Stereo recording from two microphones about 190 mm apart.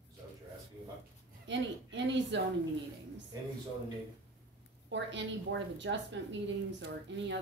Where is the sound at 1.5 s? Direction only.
70° right (ahead or behind).